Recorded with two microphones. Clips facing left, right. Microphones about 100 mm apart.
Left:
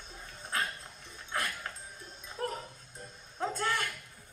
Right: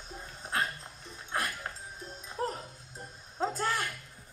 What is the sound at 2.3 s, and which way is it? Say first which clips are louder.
Dog: right 2 dB; 20° right (ahead or behind).